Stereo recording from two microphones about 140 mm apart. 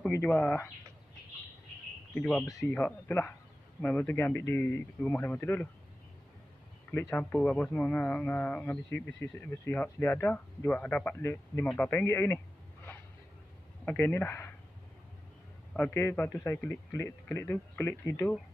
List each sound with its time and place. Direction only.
0.1 s speech: 10° left (ahead or behind)
2.1 s speech: 10° left (ahead or behind)
2.4 s speech: 25° left (ahead or behind)
2.7 s speech: 15° left (ahead or behind)
6.9 s speech: 15° left (ahead or behind)
13.8 s speech: 15° left (ahead or behind)
15.7 s speech: 15° left (ahead or behind)